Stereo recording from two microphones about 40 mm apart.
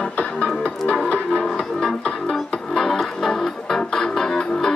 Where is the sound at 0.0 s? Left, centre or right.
Left.